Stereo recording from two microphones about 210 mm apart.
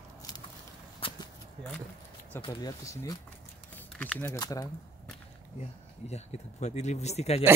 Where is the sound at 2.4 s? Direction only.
15° left (ahead or behind).